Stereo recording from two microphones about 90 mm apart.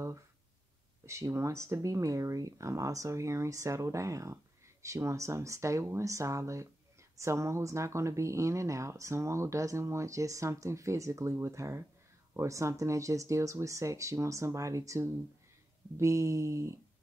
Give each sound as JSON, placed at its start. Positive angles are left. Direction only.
{"t": 1.0, "sound": "speech", "side_deg": -30}